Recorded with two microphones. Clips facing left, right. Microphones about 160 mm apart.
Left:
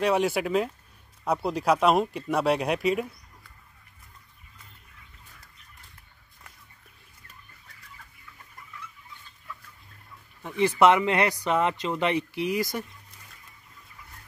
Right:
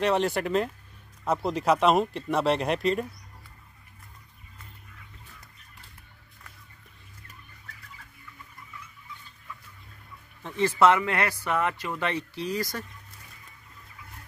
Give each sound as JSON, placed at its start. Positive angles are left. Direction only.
{"t": 0.0, "sound": "speech", "side_deg": 5}
{"t": 10.4, "sound": "speech", "side_deg": 15}